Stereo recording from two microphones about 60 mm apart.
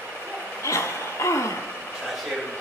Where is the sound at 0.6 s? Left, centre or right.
Left.